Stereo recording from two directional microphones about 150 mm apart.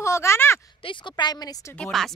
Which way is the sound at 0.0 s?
20° left (ahead or behind).